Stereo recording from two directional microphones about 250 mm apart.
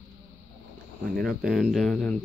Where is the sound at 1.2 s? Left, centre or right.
Centre.